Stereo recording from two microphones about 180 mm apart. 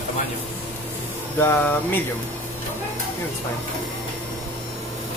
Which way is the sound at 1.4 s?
10° left (ahead or behind).